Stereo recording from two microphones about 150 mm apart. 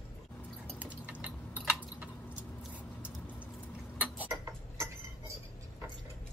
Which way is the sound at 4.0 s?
10° right (ahead or behind).